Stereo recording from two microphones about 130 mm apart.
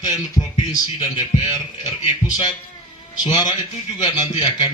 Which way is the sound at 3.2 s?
30° left (ahead or behind).